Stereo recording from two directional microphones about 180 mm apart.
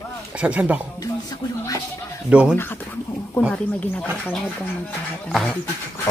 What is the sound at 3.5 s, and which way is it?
A man's voice, 10° left (ahead or behind).